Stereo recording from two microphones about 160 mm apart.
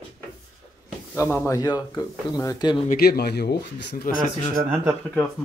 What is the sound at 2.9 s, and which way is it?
Speech, 75° left (ahead or behind).